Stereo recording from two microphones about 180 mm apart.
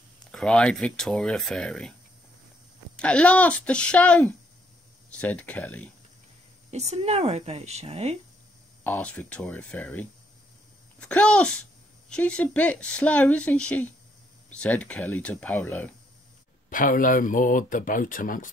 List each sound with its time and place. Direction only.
0.3 s speech: 5° left (ahead or behind)
3.0 s speech: 5° left (ahead or behind)
6.7 s speech: 40° right (ahead or behind)
8.8 s speech: 10° left (ahead or behind)
16.6 s speech: 50° left (ahead or behind)